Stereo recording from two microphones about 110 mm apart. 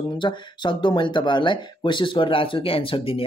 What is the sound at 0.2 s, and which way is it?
Speech, 45° left (ahead or behind).